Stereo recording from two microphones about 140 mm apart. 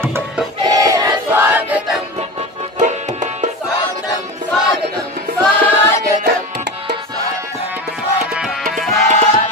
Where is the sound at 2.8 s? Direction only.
60° right (ahead or behind).